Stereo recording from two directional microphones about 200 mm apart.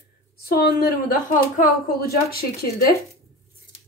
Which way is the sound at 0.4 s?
50° left (ahead or behind).